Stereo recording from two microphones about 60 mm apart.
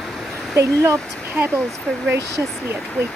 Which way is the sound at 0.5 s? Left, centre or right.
Right.